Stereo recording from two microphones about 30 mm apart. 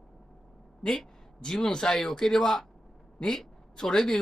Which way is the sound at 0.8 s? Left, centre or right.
Centre.